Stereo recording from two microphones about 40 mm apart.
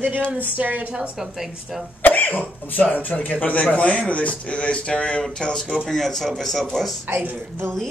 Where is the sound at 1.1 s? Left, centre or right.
Centre.